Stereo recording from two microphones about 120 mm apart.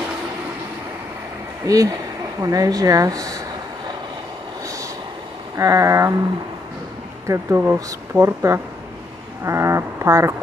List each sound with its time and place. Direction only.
1.6 s speech: 30° right (ahead or behind)
5.6 s speech: 25° right (ahead or behind)
7.2 s speech: 20° right (ahead or behind)